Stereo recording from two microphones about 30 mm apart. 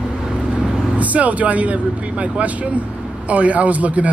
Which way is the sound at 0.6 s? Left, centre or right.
Right.